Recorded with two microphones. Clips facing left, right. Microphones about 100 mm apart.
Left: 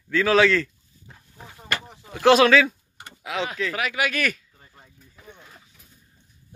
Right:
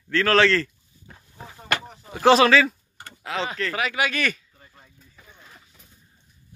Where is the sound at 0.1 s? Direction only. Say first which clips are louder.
Even; 5° left (ahead or behind).